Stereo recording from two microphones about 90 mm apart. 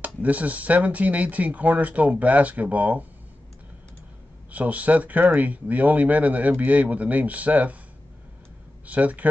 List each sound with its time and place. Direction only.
0.0 s speech: 15° right (ahead or behind)
4.5 s speech: 15° right (ahead or behind)
8.8 s speech: 15° right (ahead or behind)